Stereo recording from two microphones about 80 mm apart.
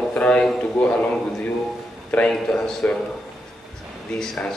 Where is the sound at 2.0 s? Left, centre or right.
Centre.